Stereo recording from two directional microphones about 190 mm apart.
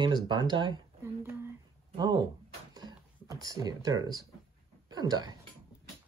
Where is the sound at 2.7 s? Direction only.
20° right (ahead or behind).